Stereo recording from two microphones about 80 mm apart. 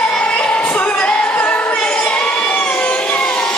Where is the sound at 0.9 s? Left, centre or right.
Centre.